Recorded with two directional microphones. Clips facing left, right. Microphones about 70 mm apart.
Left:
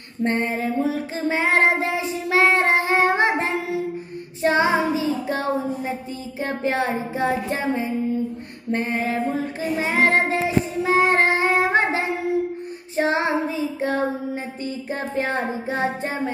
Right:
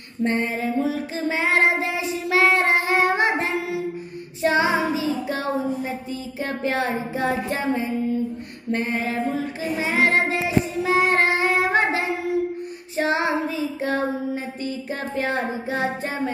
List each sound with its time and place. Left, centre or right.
0.2 s child singing: left
8.7 s child singing: left
9.3 s child singing: left